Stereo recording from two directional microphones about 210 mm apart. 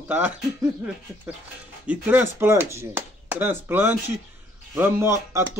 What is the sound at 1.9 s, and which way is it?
Speech, 10° right (ahead or behind).